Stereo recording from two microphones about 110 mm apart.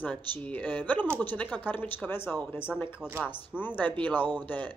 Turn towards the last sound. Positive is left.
turn(degrees=15)  # may be behind; listen again after turning